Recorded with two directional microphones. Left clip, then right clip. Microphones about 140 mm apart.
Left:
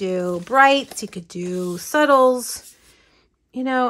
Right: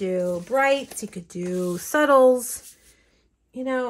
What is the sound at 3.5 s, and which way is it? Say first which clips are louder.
Speech: left 5 dB; 70° left (ahead or behind).